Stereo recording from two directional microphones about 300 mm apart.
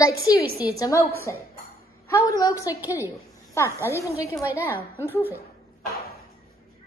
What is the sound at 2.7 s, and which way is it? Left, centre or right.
Speech, centre.